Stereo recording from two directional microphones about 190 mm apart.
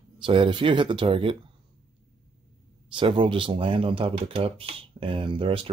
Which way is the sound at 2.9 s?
25° right (ahead or behind).